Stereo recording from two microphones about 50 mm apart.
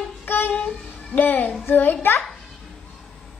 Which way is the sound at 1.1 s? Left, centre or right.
Left.